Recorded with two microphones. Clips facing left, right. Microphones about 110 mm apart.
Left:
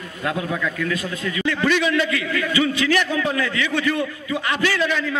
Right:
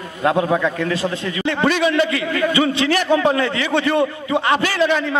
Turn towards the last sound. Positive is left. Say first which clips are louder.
# right 4 dB
turn(degrees=-35)  # may be behind; listen again after turning